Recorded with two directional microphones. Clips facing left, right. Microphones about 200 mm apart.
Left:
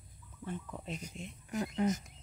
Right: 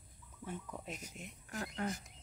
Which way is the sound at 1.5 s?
15° left (ahead or behind).